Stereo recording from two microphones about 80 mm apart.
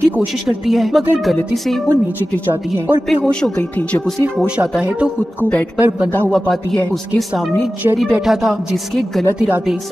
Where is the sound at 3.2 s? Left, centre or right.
Centre.